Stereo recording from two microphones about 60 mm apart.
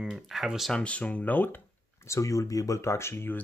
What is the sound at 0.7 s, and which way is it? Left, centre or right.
Speech, centre.